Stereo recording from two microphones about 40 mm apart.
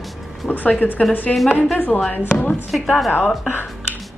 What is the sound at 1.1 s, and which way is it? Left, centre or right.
Speech, left.